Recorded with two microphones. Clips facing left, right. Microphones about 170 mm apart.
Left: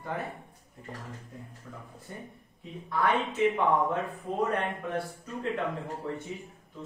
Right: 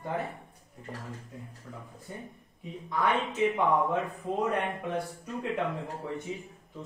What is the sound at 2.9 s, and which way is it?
Speech, 20° right (ahead or behind).